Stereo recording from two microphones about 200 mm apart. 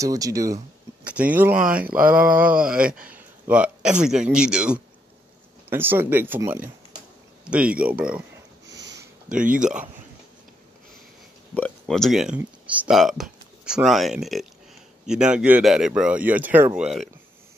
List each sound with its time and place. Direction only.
0.0 s speech: 15° right (ahead or behind)
1.0 s speech: 5° right (ahead or behind)
2.2 s a sound: 45° right (ahead or behind)
2.6 s speech: 5° right (ahead or behind)
3.0 s a sound: 5° right (ahead or behind)
4.0 s speech: 5° right (ahead or behind)
8.6 s sniff: 60° right (ahead or behind)
9.3 s speech: 40° right (ahead or behind)
11.8 s speech: centre (ahead or behind)